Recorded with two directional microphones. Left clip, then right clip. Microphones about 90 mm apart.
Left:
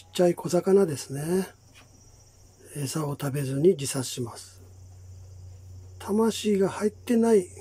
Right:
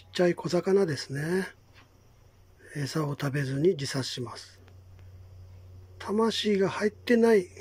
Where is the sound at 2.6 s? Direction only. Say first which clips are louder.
Even; 25° left (ahead or behind).